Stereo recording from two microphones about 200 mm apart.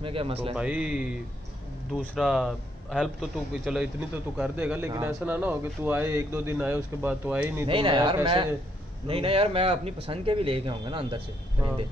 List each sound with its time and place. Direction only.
0.0 s speech: 25° right (ahead or behind)
0.6 s a man's voice: 5° right (ahead or behind)
7.6 s speech: 25° right (ahead or behind)